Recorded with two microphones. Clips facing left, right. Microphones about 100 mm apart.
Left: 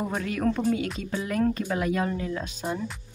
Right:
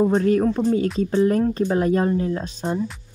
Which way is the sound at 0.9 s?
35° right (ahead or behind).